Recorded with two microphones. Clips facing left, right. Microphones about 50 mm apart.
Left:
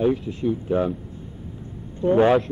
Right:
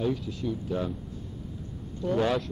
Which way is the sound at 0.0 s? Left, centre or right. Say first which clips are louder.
Left 8 dB; left.